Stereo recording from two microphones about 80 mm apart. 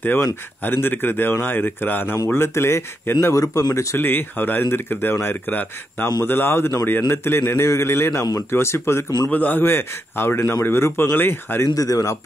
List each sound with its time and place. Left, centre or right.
0.0 s a man's voice: left
9.3 s a man's voice: left
11.6 s speech: left